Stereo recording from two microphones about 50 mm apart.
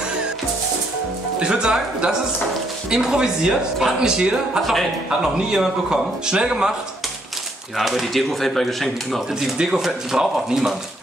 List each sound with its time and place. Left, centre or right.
1.4 s a man's voice: centre
4.6 s speech: centre
5.2 s a man's voice: centre
7.7 s speech: centre
9.4 s a man's voice: centre